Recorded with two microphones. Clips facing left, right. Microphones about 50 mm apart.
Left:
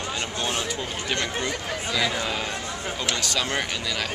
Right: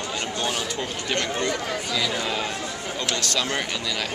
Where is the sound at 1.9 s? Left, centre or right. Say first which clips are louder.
Left 1 dB; centre.